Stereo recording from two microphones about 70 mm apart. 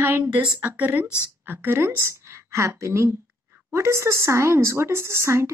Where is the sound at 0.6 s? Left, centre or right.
Right.